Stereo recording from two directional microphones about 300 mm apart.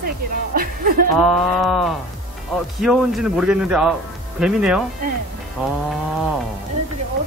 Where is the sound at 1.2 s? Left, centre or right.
Centre.